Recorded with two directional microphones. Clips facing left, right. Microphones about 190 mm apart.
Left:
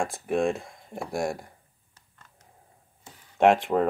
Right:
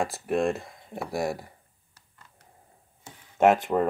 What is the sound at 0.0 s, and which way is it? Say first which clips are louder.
Speech: even; centre (ahead or behind).